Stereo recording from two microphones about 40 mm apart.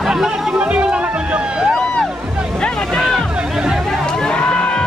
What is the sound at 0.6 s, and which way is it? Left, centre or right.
Music, right.